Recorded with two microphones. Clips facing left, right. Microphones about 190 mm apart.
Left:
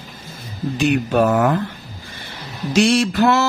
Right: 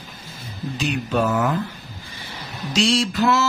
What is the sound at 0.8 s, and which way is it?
Speech, 60° left (ahead or behind).